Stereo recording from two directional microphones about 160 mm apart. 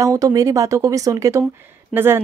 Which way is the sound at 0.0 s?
20° right (ahead or behind).